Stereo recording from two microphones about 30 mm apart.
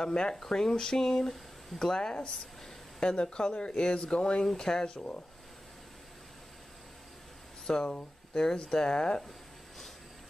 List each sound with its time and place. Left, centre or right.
0.0 s speech: left
4.8 s speech: left
7.6 s speech: left